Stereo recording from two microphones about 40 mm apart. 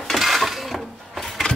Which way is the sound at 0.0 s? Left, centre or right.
Centre.